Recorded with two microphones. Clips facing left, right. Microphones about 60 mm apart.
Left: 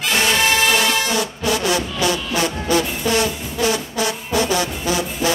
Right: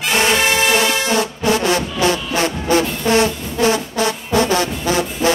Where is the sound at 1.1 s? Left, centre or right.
Right.